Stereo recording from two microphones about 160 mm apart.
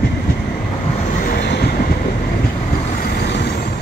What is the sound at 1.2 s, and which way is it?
Vehicle, 80° left.